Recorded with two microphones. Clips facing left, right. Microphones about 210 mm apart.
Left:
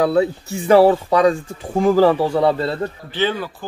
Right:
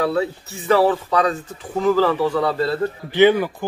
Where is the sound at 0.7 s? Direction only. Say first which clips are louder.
Left 6 dB; 35° left (ahead or behind).